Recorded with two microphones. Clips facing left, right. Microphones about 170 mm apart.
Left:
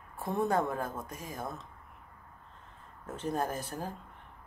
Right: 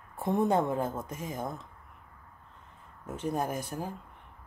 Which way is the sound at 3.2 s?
10° right (ahead or behind).